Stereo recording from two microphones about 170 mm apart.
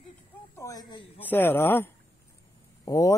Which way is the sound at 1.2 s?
10° left (ahead or behind).